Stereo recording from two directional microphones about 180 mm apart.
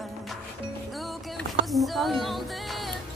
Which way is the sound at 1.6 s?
Centre (ahead or behind).